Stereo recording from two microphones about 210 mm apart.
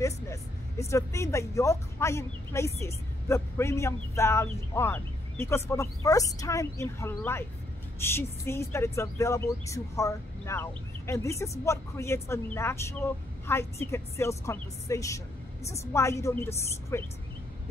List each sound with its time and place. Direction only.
0.0 s speech: 15° left (ahead or behind)